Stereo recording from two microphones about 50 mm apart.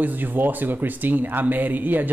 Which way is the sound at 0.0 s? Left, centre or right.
Right.